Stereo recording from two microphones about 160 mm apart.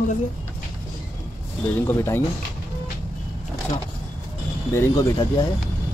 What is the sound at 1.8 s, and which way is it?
Speech, 15° left (ahead or behind).